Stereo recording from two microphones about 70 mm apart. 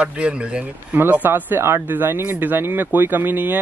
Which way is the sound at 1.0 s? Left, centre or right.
Right.